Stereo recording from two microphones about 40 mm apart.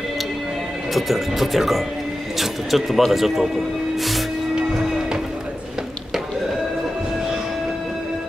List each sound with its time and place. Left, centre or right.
0.9 s speech: centre
4.6 s music: centre